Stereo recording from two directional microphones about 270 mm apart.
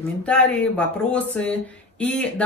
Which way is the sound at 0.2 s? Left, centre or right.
Centre.